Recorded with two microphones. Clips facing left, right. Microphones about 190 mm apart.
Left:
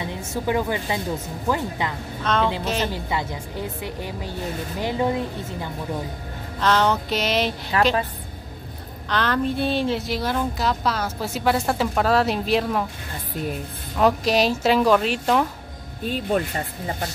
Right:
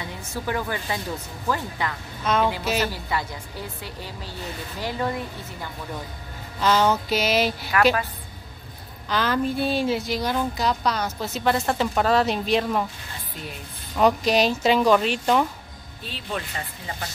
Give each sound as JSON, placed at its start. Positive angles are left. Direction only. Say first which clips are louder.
{"t": 0.3, "sound": "a woman's voice", "louder": "left 4 dB", "side_deg": 20}
{"t": 2.2, "sound": "a woman's voice", "louder": "even", "side_deg": -10}
{"t": 2.9, "sound": "a woman's voice", "louder": "left 2 dB", "side_deg": 20}
{"t": 6.6, "sound": "a woman's voice", "louder": "even", "side_deg": -5}
{"t": 7.7, "sound": "a woman's voice", "louder": "right 1 dB", "side_deg": 30}
{"t": 9.1, "sound": "a woman's voice", "louder": "left 1 dB", "side_deg": 0}
{"t": 13.9, "sound": "a woman's voice", "louder": "even", "side_deg": 0}
{"t": 16.0, "sound": "speech", "louder": "left 9 dB", "side_deg": 50}